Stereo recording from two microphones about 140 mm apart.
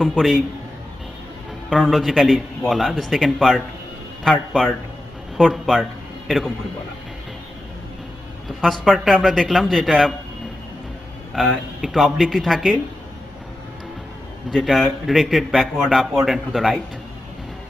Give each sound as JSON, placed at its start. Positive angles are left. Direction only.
{"t": 1.7, "sound": "a man's voice", "side_deg": 0}
{"t": 8.5, "sound": "a man's voice", "side_deg": 0}
{"t": 11.3, "sound": "a man's voice", "side_deg": -5}
{"t": 14.5, "sound": "a man's voice", "side_deg": 0}